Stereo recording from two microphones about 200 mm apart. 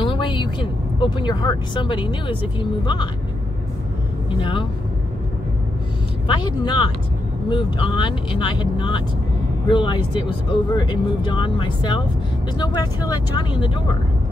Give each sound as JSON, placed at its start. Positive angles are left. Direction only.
{"t": 0.0, "sound": "speech", "side_deg": 25}
{"t": 4.3, "sound": "speech", "side_deg": 25}
{"t": 6.2, "sound": "speech", "side_deg": 20}